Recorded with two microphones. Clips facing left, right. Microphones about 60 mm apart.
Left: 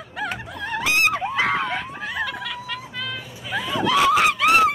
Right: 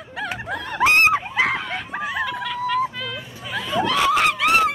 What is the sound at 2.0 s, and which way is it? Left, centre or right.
Hubbub, centre.